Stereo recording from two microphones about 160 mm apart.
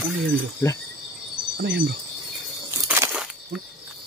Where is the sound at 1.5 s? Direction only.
75° right (ahead or behind).